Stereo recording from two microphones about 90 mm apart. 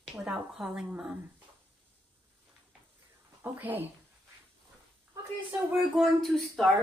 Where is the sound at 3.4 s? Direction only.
20° right (ahead or behind).